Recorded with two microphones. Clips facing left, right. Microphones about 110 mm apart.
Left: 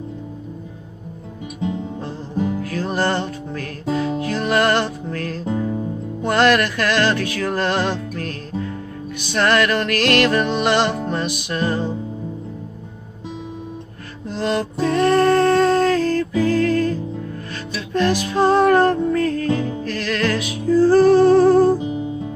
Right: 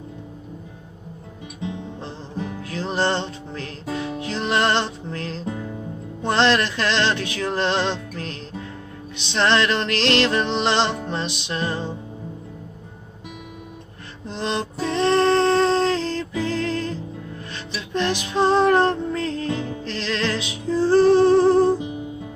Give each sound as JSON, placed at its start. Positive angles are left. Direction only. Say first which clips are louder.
{"t": 2.3, "sound": "music", "louder": "left 9 dB", "side_deg": 10}
{"t": 2.6, "sound": "music", "louder": "left 2 dB", "side_deg": -20}
{"t": 5.4, "sound": "music", "louder": "left 7 dB", "side_deg": 10}
{"t": 6.2, "sound": "music", "louder": "left 3 dB", "side_deg": -25}
{"t": 9.3, "sound": "music", "louder": "left 2 dB", "side_deg": -25}
{"t": 14.2, "sound": "music", "louder": "left 4 dB", "side_deg": -25}